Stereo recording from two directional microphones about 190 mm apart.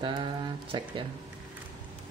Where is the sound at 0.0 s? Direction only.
25° right (ahead or behind).